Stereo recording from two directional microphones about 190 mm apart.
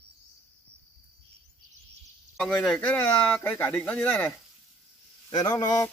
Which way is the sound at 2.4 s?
5° left (ahead or behind).